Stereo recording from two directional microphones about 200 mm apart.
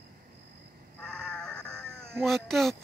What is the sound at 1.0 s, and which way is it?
Sheep, 5° left (ahead or behind).